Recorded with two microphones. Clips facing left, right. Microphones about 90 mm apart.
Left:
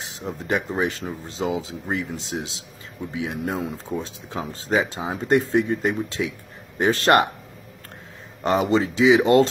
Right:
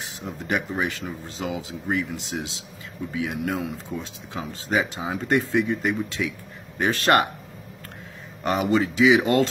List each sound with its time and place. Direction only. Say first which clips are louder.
0.0 s speech: left 2 dB; 25° left (ahead or behind)
8.4 s speech: left 2 dB; 25° left (ahead or behind)